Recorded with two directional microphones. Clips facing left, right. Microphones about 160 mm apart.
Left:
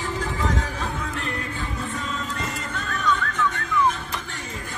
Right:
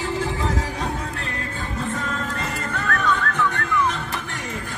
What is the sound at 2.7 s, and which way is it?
Music, 60° right (ahead or behind).